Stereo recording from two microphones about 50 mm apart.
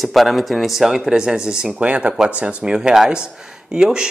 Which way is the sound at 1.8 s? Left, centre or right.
Right.